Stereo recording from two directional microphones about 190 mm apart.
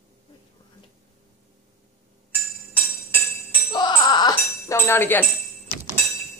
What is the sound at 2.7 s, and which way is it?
Music, 5° right (ahead or behind).